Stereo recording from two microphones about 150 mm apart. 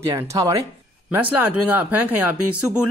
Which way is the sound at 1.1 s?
10° right (ahead or behind).